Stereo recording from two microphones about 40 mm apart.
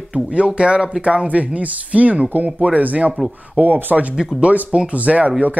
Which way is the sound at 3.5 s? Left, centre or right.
Right.